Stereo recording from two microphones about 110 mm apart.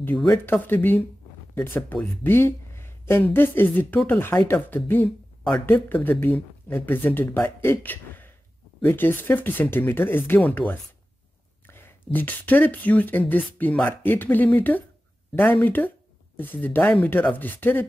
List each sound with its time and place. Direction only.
0.5 s speech: 20° left (ahead or behind)